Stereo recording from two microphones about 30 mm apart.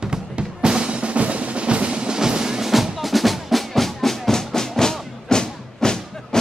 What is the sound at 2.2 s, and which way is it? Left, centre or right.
Music, right.